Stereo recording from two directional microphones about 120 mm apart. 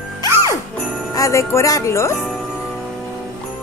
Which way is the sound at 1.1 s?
25° left (ahead or behind).